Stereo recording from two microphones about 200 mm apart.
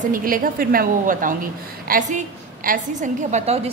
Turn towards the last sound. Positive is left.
turn(degrees=-40)  # may be behind; listen again after turning